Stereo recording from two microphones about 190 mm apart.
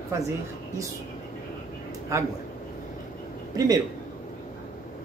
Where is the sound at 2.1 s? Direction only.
15° right (ahead or behind).